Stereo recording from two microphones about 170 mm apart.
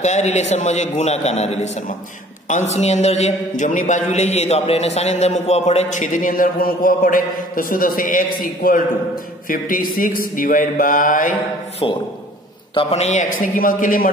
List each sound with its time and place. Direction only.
0.0 s a man's voice: 45° left (ahead or behind)
11.8 s a man's voice: 35° left (ahead or behind); by 14.1 s 55° left (ahead or behind)